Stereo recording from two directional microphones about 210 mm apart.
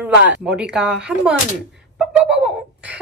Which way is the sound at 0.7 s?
5° right (ahead or behind).